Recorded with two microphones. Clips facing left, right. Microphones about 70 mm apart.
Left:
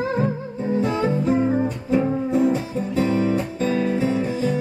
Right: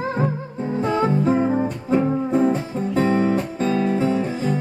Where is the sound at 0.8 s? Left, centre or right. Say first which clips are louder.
Right 4 dB; right.